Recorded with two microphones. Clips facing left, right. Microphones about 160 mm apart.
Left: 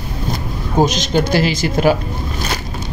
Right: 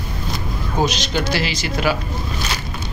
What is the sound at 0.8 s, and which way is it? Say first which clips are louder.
A man's voice: left 6 dB; 45° left (ahead or behind).